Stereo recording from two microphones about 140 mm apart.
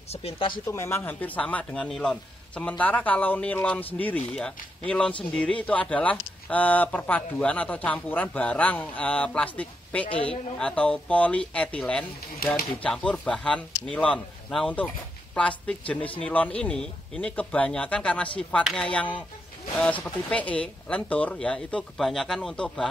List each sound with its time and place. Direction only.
0.1 s speech: 45° left (ahead or behind)
0.7 s speech: 20° left (ahead or behind)
18.6 s speech: centre (ahead or behind)
18.9 s speech: 10° left (ahead or behind)